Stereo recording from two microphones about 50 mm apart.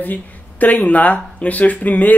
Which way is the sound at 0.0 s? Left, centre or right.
Left.